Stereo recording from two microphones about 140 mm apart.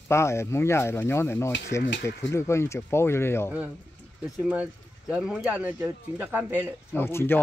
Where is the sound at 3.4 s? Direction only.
10° right (ahead or behind).